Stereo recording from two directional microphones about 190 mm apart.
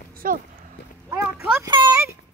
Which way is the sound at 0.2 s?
45° right (ahead or behind).